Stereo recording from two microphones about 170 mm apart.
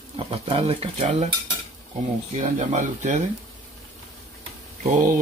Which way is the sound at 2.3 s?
45° right (ahead or behind).